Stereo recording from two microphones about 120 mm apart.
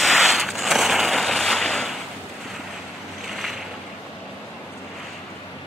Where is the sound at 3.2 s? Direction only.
5° right (ahead or behind).